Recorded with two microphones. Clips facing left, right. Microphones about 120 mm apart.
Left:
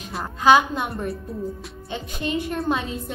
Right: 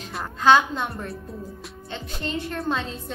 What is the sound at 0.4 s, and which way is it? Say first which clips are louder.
A woman's voice: left 1 dB; 10° left (ahead or behind).